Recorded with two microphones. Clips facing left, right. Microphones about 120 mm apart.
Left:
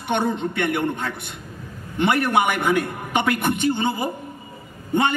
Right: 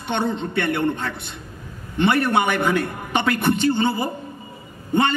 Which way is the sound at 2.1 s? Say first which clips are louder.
Left 1 dB; 20° left (ahead or behind).